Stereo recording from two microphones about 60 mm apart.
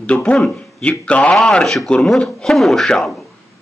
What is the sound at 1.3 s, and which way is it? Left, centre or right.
Speech, centre.